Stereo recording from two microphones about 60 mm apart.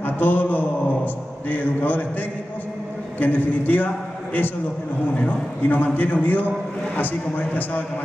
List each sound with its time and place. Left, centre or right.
0.0 s a man's voice: left
3.2 s a man's voice: left